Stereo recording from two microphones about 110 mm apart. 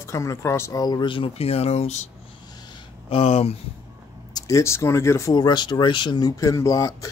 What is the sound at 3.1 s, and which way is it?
Speech, 65° left (ahead or behind).